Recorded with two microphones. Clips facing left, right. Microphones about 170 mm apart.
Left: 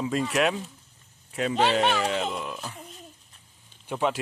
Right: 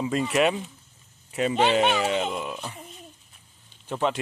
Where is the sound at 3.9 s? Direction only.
10° left (ahead or behind).